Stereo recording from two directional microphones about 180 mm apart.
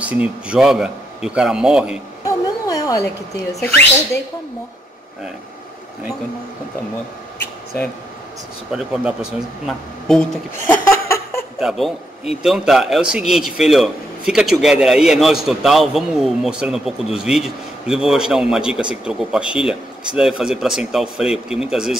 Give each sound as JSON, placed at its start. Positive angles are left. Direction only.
{"t": 0.0, "sound": "a man's voice", "side_deg": -5}
{"t": 2.2, "sound": "a sound", "side_deg": 20}
{"t": 3.5, "sound": "speech", "side_deg": 10}
{"t": 7.3, "sound": "a sound", "side_deg": 10}
{"t": 8.7, "sound": "a man's voice", "side_deg": -5}
{"t": 10.7, "sound": "laughter", "side_deg": 15}
{"t": 11.6, "sound": "a man's voice", "side_deg": 0}